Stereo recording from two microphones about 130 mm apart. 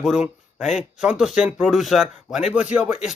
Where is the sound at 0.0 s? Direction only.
5° right (ahead or behind).